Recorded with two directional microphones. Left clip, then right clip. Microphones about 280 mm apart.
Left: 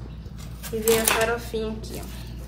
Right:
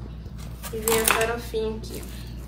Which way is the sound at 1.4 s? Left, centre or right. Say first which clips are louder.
Right 2 dB; centre.